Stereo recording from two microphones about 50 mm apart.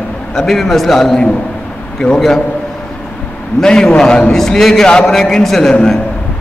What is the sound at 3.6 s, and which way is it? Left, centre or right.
A man's voice, centre.